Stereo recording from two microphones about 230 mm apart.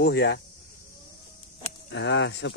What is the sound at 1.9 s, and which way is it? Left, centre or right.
Speech, left.